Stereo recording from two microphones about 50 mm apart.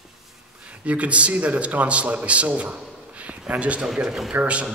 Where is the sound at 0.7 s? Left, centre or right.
Right.